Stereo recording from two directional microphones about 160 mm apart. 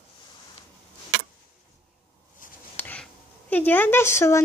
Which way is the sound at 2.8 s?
10° left (ahead or behind).